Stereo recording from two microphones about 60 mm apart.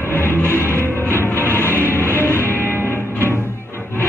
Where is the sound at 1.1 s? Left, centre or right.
Left.